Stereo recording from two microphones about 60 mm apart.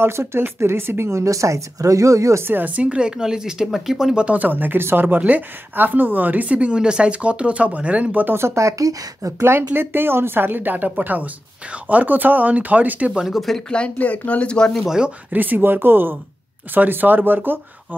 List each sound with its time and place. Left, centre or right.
0.0 s speech: right
2.4 s speech: right; by 4.2 s centre
4.2 s a woman's voice: right
8.4 s speech: right
9.4 s a woman's voice: right
13.2 s speech: centre
13.7 s speech: centre
14.7 s speech: centre
15.3 s speech: right